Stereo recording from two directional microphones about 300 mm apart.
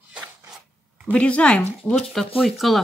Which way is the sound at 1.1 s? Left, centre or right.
Centre.